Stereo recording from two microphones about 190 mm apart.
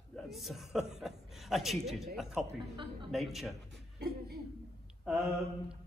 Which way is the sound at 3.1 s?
Centre (ahead or behind).